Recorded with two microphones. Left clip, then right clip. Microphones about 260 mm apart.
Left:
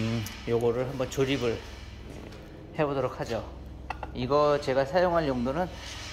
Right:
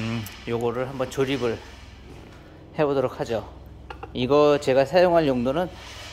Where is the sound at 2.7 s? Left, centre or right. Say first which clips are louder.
Right 6 dB; right.